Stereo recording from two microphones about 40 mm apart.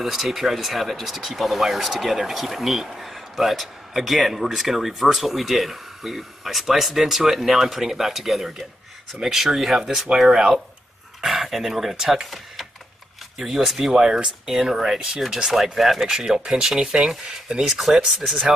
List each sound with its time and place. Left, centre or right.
0.0 s speech: centre
13.7 s speech: centre